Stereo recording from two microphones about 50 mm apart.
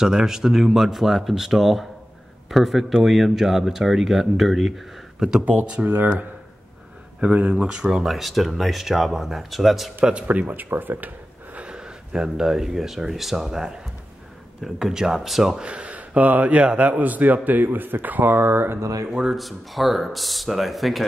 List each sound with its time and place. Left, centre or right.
0.0 s speech: centre
5.4 s speech: right
5.9 s speech: right
7.2 s speech: right
8.0 s speech: centre
10.2 s speech: right
11.5 s speech: right; by 15.6 s centre
15.6 s speech: right
19.3 s speech: centre